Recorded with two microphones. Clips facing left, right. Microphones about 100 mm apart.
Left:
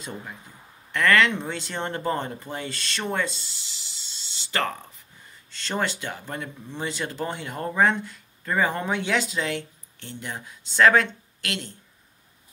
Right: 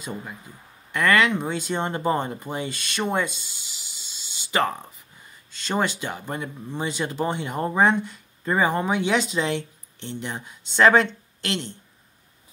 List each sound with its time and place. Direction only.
0.9 s speech: 15° right (ahead or behind)